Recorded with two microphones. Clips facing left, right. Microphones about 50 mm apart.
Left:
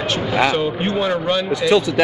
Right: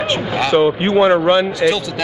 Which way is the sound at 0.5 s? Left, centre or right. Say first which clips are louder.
Right 6 dB; right.